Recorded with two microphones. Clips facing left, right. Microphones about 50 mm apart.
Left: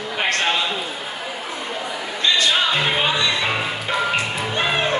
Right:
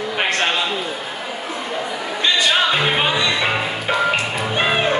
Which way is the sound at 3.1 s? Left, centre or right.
Centre.